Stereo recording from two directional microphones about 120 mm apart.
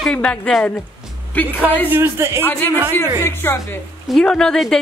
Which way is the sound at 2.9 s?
20° left (ahead or behind).